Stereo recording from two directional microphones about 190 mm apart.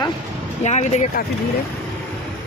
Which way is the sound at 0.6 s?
40° left (ahead or behind).